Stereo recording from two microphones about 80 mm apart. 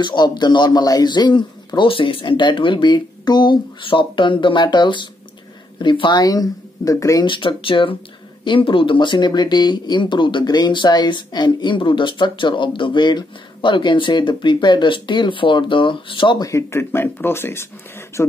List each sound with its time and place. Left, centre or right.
0.0 s speech: left
6.2 s speech: left
7.2 s speech: left
16.4 s speech: left